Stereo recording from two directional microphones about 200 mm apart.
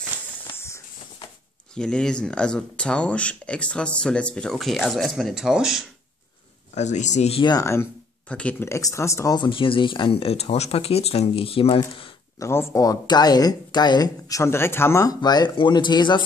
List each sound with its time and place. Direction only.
1.8 s speech: 5° left (ahead or behind)
6.7 s speech: 35° left (ahead or behind)
12.0 s speech: 15° left (ahead or behind)